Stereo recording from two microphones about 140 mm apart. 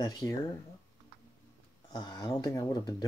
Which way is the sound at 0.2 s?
15° left (ahead or behind).